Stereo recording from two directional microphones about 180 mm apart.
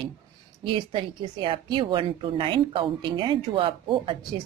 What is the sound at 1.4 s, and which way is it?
A woman's voice, 30° right (ahead or behind).